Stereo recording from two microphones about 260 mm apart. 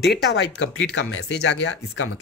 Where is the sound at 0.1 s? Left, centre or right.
Left.